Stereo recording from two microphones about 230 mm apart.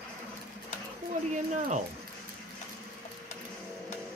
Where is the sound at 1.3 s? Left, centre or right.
Right.